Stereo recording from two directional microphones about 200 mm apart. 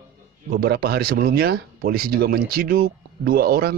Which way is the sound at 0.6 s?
50° right (ahead or behind).